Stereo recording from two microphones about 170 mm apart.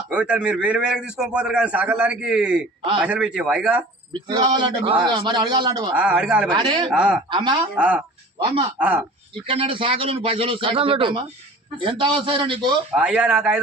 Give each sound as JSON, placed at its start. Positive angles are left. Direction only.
{"t": 0.1, "sound": "a man's voice", "side_deg": -5}
{"t": 4.1, "sound": "a man's voice", "side_deg": -25}
{"t": 5.9, "sound": "a man's voice", "side_deg": -5}
{"t": 6.5, "sound": "a man's voice", "side_deg": -25}
{"t": 6.9, "sound": "a man's voice", "side_deg": -5}
{"t": 7.2, "sound": "a man's voice", "side_deg": -25}
{"t": 7.7, "sound": "a man's voice", "side_deg": -5}
{"t": 9.5, "sound": "a man's voice", "side_deg": -30}
{"t": 12.9, "sound": "a man's voice", "side_deg": -5}